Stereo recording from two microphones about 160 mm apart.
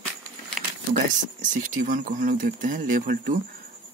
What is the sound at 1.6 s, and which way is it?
Speech, 55° right (ahead or behind).